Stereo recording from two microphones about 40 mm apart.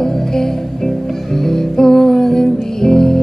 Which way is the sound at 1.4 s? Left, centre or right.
Centre.